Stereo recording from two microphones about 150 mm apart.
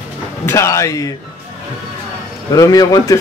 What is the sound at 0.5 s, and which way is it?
Speech, 20° left (ahead or behind).